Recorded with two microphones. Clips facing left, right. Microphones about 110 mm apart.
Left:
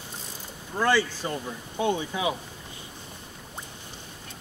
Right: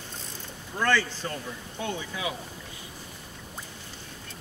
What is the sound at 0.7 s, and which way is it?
Speech, 15° left (ahead or behind).